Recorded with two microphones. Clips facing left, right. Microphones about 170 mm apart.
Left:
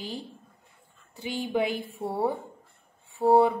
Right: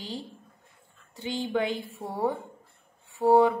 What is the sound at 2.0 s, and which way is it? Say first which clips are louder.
A woman's voice: left 2 dB; 10° left (ahead or behind).